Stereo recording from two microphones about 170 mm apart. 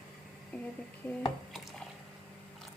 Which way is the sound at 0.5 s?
5° left (ahead or behind).